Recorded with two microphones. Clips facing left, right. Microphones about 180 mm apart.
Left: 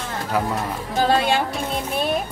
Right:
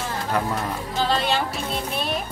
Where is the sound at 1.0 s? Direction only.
50° left (ahead or behind).